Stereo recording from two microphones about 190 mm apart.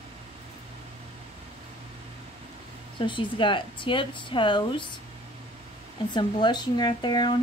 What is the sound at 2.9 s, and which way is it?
Speech, 25° left (ahead or behind).